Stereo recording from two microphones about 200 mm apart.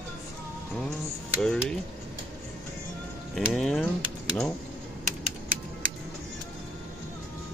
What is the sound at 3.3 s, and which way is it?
Speech, centre (ahead or behind).